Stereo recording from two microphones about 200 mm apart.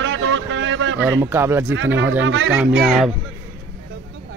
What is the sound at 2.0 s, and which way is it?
Speech, 75° right (ahead or behind).